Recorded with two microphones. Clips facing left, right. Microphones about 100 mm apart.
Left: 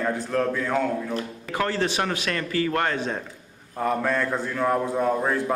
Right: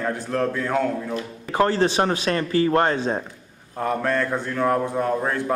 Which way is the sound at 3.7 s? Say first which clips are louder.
Right 1 dB; centre (ahead or behind).